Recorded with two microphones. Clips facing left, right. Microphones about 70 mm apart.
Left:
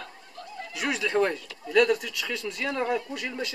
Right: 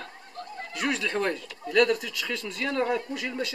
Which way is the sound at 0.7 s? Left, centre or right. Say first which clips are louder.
Left 2 dB; centre.